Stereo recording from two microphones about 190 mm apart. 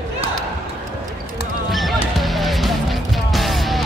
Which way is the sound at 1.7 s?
Centre (ahead or behind).